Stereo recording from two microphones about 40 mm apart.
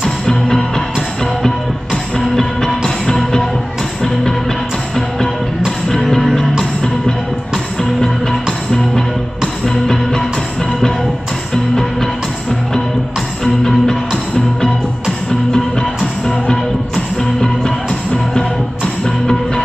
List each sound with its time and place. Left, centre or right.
0.0 s music: centre
5.9 s music: centre
11.5 s music: centre
13.4 s music: centre
17.2 s music: centre